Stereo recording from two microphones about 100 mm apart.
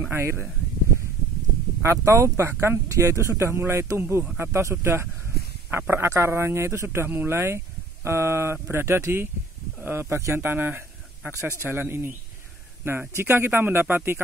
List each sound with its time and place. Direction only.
0.1 s speech: 25° right (ahead or behind)
1.8 s a man's voice: 30° right (ahead or behind)
13.1 s speech: 20° right (ahead or behind)